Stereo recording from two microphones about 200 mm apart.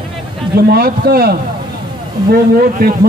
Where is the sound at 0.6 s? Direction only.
50° right (ahead or behind).